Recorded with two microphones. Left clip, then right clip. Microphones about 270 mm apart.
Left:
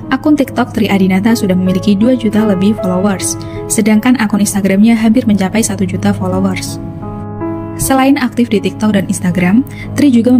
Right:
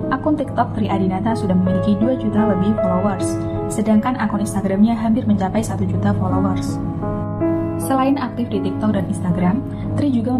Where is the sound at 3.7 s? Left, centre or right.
Left.